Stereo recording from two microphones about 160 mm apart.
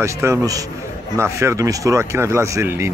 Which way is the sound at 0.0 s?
20° right (ahead or behind).